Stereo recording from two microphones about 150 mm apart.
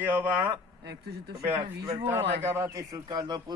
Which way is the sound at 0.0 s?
10° right (ahead or behind).